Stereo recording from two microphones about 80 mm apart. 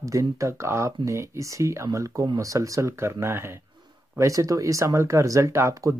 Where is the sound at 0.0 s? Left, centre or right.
Right.